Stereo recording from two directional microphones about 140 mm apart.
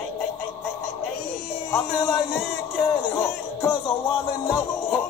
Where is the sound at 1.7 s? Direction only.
20° left (ahead or behind).